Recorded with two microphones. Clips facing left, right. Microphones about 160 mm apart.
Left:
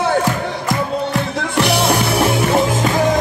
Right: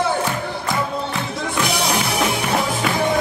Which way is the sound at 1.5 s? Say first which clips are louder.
Left 6 dB; 65° left (ahead or behind).